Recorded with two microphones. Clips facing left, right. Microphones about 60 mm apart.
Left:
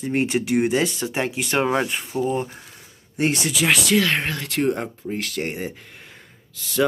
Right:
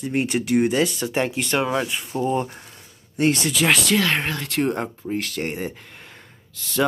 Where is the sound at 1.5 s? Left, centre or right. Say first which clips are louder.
Left 3 dB; left.